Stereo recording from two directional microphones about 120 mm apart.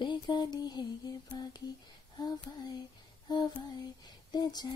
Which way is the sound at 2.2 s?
40° left (ahead or behind).